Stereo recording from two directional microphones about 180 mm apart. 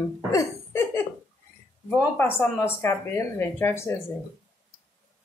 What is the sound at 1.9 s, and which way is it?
Speech, 10° left (ahead or behind).